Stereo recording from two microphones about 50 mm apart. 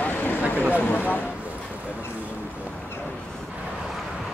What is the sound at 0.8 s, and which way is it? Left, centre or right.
Speech, left.